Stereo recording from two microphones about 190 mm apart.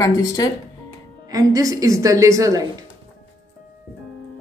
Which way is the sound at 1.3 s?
20° right (ahead or behind).